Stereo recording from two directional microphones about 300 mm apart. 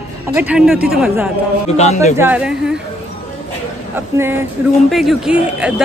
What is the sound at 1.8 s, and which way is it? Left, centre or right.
Speech, left.